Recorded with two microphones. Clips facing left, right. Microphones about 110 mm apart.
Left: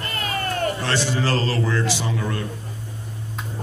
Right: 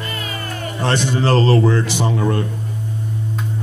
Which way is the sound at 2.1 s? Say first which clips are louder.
Right 7 dB; 35° right (ahead or behind).